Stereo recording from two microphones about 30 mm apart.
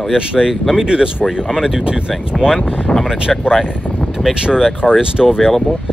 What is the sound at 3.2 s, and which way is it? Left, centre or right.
Speech, right.